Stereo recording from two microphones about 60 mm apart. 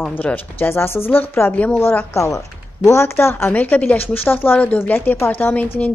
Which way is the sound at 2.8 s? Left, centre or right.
Left.